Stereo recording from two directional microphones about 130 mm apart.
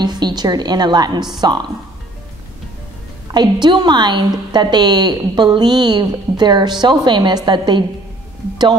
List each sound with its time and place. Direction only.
0.0 s a woman's voice: 35° right (ahead or behind)
3.6 s a woman's voice: 35° right (ahead or behind)